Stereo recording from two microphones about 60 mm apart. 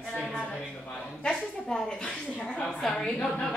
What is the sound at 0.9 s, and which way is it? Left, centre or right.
A man's voice, centre.